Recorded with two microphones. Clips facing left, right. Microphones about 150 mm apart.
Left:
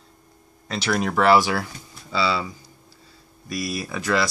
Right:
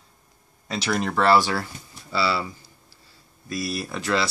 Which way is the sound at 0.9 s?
5° left (ahead or behind).